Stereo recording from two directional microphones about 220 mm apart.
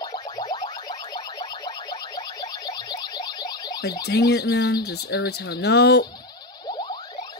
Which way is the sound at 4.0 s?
50° left (ahead or behind).